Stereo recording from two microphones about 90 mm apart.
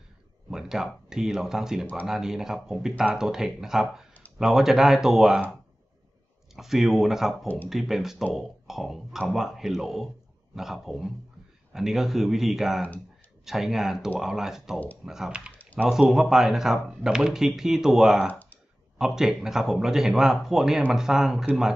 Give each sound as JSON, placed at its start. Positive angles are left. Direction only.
{"t": 0.5, "sound": "speech", "side_deg": -5}
{"t": 6.5, "sound": "speech", "side_deg": -5}
{"t": 7.4, "sound": "speech", "side_deg": 20}
{"t": 7.7, "sound": "speech", "side_deg": -5}